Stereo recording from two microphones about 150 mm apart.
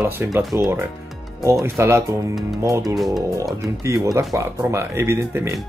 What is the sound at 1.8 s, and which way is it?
Speech, 20° right (ahead or behind).